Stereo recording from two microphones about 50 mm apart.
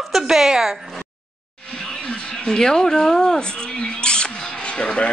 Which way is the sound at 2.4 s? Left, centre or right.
Centre.